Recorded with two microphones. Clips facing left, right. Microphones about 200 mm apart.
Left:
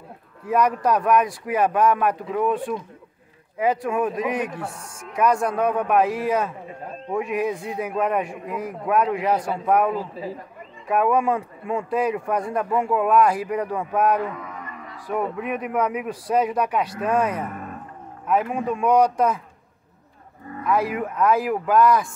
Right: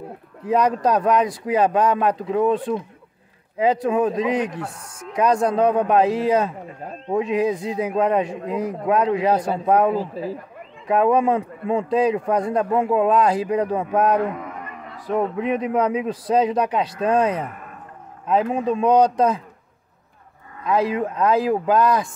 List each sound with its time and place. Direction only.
0.5 s a man's voice: 20° right (ahead or behind)
20.6 s a man's voice: 25° right (ahead or behind)